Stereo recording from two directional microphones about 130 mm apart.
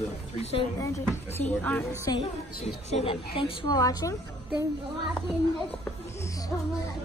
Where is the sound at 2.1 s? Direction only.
30° left (ahead or behind).